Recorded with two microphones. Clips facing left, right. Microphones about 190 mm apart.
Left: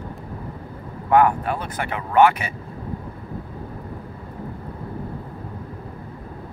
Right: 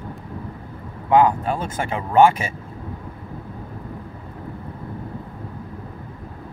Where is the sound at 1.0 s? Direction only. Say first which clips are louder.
Right 1 dB; 20° right (ahead or behind).